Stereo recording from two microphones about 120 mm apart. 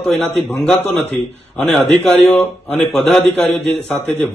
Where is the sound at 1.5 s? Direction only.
10° left (ahead or behind).